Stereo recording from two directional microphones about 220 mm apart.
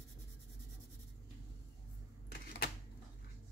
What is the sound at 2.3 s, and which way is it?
Typewriter, 45° left (ahead or behind).